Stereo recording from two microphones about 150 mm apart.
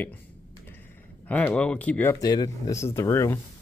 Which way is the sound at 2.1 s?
25° left (ahead or behind).